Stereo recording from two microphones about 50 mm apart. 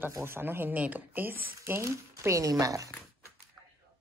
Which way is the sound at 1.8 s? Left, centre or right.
Right.